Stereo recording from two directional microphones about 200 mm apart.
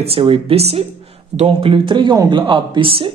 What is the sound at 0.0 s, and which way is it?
Speech, 25° right (ahead or behind).